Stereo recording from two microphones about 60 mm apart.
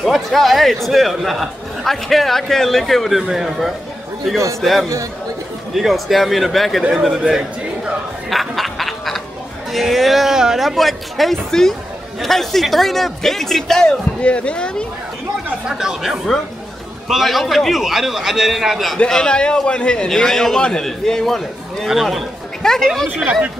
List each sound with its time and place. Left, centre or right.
0.0 s speech: centre
8.3 s duck: centre
9.7 s speech: centre
14.2 s a man's voice: centre
15.7 s speech: centre
19.0 s a man's voice: centre
21.8 s speech: centre
22.6 s speech: centre